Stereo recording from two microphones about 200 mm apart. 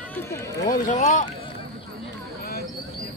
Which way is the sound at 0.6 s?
40° left (ahead or behind).